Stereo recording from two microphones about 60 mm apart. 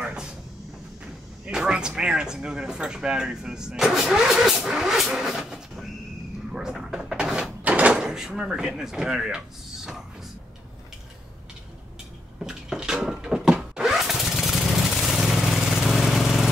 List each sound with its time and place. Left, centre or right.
0.0 s a sound: centre
1.4 s speech: centre
6.5 s cupboard open or close: centre
7.6 s door: right
8.1 s speech: centre
12.4 s a sound: centre
15.0 s vehicle: centre